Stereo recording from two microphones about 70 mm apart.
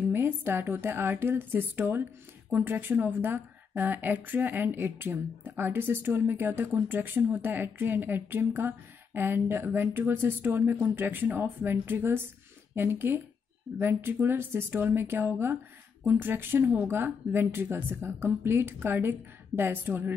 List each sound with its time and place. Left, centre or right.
0.1 s a woman's voice: right